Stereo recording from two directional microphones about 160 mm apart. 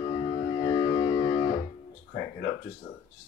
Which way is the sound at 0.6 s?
30° left (ahead or behind).